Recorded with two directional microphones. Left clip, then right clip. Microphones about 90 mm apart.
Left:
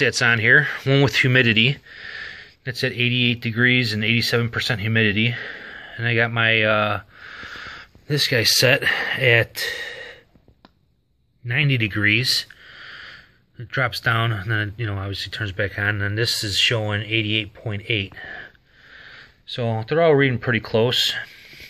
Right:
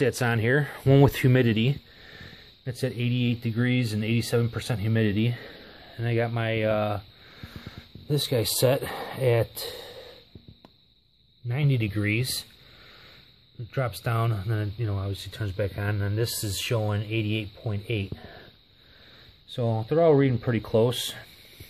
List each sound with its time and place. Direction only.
0.0 s speech: 50° right (ahead or behind)
0.8 s speech: 60° right (ahead or behind)
1.4 s speech: 35° right (ahead or behind)
5.5 s speech: 15° right (ahead or behind)
11.4 s speech: 20° right (ahead or behind)
13.7 s speech: 20° right (ahead or behind)
15.1 s speech: 20° right (ahead or behind)
15.6 s speech: 5° right (ahead or behind)
18.2 s a sound: 10° left (ahead or behind)
19.4 s speech: 25° right (ahead or behind)